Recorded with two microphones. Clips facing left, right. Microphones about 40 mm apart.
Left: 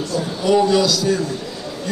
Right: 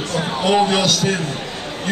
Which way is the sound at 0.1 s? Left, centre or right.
Right.